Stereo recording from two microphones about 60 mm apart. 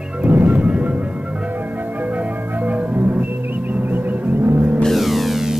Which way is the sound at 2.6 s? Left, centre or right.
Right.